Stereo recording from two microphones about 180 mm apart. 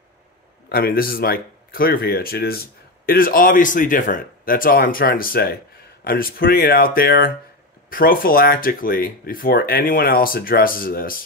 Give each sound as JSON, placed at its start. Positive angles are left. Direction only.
{"t": 0.7, "sound": "speech", "side_deg": 55}